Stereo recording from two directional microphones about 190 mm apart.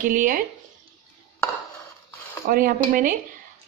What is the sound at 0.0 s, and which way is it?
Speech, 45° right (ahead or behind).